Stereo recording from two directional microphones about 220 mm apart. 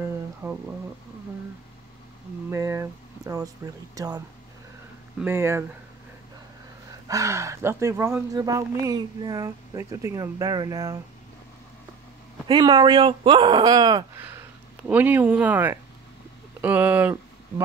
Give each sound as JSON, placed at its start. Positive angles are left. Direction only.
{"t": 0.4, "sound": "speech", "side_deg": -15}
{"t": 2.5, "sound": "speech", "side_deg": -15}
{"t": 5.2, "sound": "speech", "side_deg": -10}
{"t": 7.1, "sound": "speech", "side_deg": -15}
{"t": 12.4, "sound": "speech", "side_deg": -20}